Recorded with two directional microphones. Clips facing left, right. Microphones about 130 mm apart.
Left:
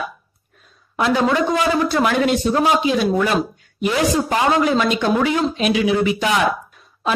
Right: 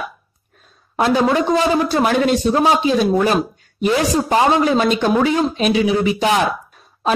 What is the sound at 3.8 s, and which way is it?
Speech, 30° right (ahead or behind).